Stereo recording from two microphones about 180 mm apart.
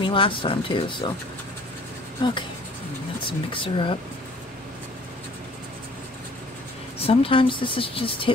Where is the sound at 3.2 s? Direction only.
30° left (ahead or behind).